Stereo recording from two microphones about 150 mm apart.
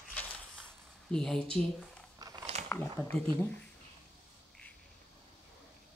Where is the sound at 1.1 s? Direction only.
5° left (ahead or behind).